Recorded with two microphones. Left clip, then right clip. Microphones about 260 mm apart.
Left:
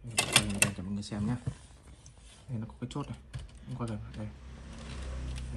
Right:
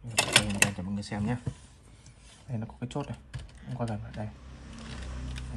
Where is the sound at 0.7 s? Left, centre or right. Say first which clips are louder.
Right 3 dB; right.